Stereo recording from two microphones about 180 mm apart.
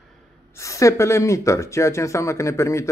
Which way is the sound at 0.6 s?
15° left (ahead or behind).